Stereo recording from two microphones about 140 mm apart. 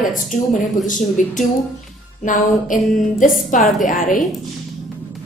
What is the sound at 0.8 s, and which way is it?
A woman's voice, 65° left (ahead or behind).